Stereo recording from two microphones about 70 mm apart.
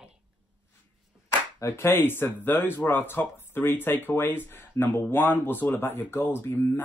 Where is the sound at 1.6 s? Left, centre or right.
Left.